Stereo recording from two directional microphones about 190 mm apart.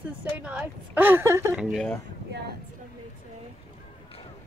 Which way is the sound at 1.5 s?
Centre (ahead or behind).